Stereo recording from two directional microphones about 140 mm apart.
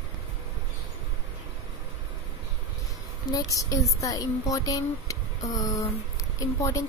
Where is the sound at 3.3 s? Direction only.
25° left (ahead or behind).